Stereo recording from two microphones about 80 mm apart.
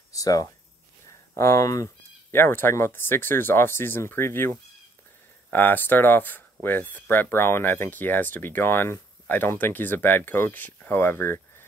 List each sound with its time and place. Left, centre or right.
0.1 s speech: left
2.3 s speech: left